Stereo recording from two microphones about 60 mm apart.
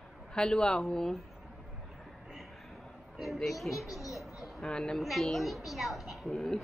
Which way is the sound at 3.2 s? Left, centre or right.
Centre.